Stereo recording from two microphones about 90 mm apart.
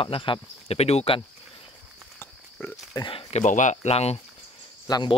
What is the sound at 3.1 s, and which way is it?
Speech, 85° left.